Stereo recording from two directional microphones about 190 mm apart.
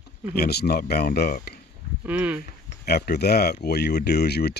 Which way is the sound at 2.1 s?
10° right (ahead or behind).